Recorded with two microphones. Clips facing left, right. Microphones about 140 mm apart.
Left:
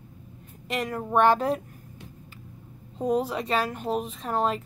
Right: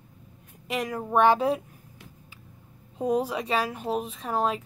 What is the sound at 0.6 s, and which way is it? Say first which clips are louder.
Speech: even; 10° right (ahead or behind).